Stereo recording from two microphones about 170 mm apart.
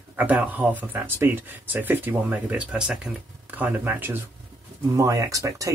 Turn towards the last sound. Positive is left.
turn(degrees=-20)  # may be behind; listen again after turning